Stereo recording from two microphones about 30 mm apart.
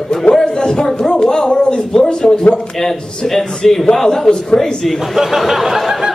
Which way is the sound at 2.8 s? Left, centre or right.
Centre.